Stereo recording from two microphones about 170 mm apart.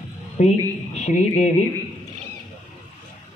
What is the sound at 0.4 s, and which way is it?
Speech, 40° left (ahead or behind).